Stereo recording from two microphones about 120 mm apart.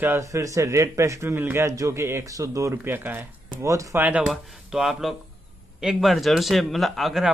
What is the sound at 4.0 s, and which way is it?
Speech, 10° right (ahead or behind).